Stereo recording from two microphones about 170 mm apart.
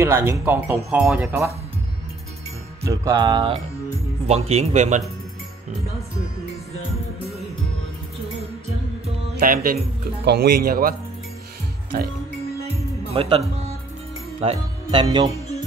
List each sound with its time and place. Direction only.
0.0 s speech: 15° right (ahead or behind)
2.8 s music: 20° right (ahead or behind)
4.3 s speech: 40° right (ahead or behind)
9.4 s speech: 55° right (ahead or behind)
10.2 s speech: 70° right (ahead or behind)
13.1 s speech: 30° right (ahead or behind)
14.4 s speech: 30° right (ahead or behind)